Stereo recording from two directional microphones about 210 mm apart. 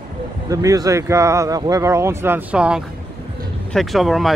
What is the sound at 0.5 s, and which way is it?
Speech, 15° right (ahead or behind).